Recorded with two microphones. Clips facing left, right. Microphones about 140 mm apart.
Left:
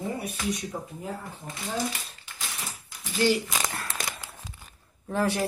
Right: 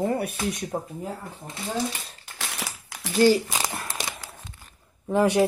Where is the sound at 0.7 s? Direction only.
45° right (ahead or behind).